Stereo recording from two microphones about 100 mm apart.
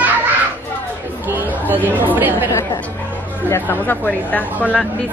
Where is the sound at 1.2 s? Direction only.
20° right (ahead or behind).